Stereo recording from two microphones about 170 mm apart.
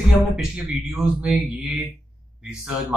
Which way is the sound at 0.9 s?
Centre (ahead or behind).